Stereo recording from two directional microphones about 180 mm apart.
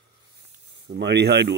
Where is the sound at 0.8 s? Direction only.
65° right (ahead or behind).